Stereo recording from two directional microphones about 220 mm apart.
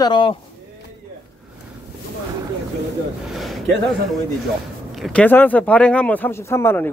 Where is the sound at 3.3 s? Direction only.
Centre (ahead or behind).